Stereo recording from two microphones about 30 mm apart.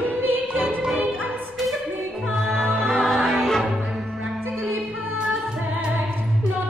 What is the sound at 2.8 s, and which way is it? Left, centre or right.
Music, centre.